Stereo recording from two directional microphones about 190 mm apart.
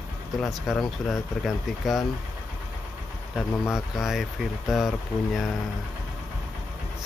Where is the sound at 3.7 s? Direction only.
Centre (ahead or behind).